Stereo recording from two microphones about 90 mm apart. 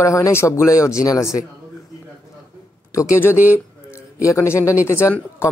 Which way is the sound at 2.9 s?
35° left (ahead or behind).